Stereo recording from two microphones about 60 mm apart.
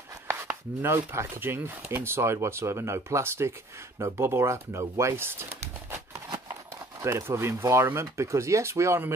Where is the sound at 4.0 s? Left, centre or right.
Right.